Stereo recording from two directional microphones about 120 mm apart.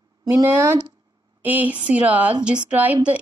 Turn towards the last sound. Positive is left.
turn(degrees=-15)  # may be behind; listen again after turning